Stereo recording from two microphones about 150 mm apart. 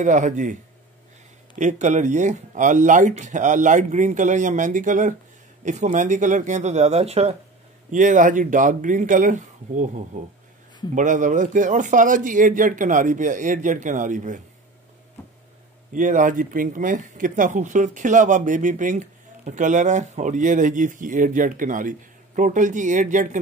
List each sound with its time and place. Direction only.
0.0 s speech: 55° right (ahead or behind)
1.6 s speech: 55° right (ahead or behind)
7.9 s speech: 60° right (ahead or behind)
15.9 s speech: 60° right (ahead or behind)